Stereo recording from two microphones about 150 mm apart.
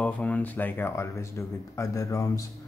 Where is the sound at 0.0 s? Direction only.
10° left (ahead or behind).